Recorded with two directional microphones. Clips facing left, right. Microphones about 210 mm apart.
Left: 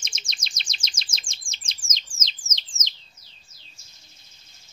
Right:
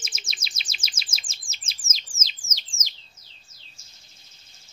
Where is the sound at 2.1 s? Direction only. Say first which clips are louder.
Even; 5° right (ahead or behind).